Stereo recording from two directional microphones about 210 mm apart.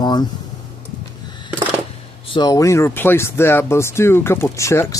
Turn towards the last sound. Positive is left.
turn(degrees=15)  # may be behind; listen again after turning